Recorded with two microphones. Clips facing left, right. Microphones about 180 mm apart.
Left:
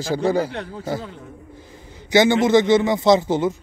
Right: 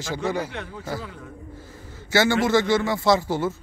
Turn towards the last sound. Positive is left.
turn(degrees=20)  # may be behind; listen again after turning